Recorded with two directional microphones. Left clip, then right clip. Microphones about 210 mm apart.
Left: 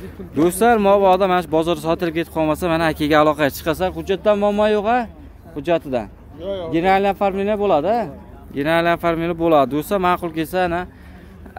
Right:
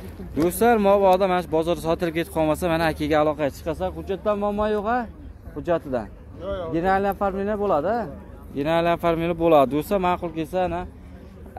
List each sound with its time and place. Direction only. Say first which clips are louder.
0.4 s speech: left 4 dB; 10° left (ahead or behind)
6.4 s speech: left 4 dB; 40° left (ahead or behind)
6.7 s speech: left 6 dB; 15° left (ahead or behind)
8.5 s speech: left 4 dB; 5° left (ahead or behind)